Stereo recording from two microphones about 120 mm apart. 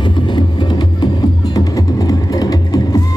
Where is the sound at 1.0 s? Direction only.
35° left (ahead or behind).